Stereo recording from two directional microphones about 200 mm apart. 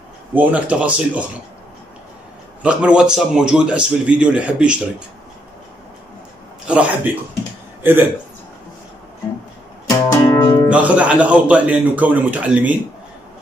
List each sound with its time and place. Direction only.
0.3 s a man's voice: 10° right (ahead or behind)
2.6 s speech: 5° right (ahead or behind)
6.7 s a man's voice: 5° right (ahead or behind)
9.8 s music: 20° left (ahead or behind)
10.7 s a man's voice: 5° right (ahead or behind)